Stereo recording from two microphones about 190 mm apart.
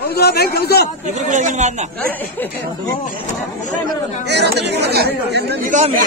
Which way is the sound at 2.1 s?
10° left (ahead or behind).